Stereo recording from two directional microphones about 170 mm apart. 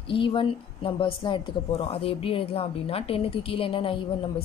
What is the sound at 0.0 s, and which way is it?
Speech, 30° left (ahead or behind).